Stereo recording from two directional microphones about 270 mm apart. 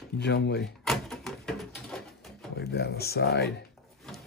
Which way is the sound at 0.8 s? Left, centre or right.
Centre.